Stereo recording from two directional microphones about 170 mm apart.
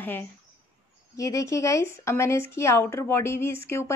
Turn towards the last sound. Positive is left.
turn(degrees=15)  # may be behind; listen again after turning